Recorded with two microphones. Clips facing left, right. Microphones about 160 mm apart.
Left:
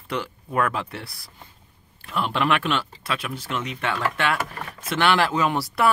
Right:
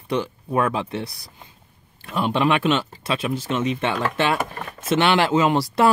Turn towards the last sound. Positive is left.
turn(degrees=-20)  # may be behind; listen again after turning